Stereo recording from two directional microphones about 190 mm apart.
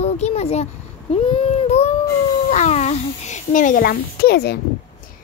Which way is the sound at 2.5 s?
35° left (ahead or behind).